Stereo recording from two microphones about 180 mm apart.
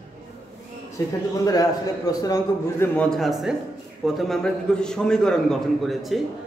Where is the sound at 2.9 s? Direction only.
Centre (ahead or behind).